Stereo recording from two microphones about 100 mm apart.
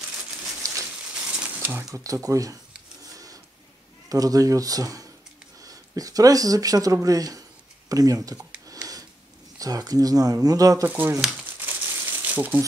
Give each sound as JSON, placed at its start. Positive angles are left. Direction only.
{"t": 1.1, "sound": "a sound", "side_deg": -10}
{"t": 1.6, "sound": "a sound", "side_deg": -20}
{"t": 2.0, "sound": "speech", "side_deg": -35}
{"t": 4.1, "sound": "speech", "side_deg": -35}
{"t": 9.6, "sound": "speech", "side_deg": -40}
{"t": 10.9, "sound": "speech", "side_deg": -20}
{"t": 11.6, "sound": "crumpling", "side_deg": -20}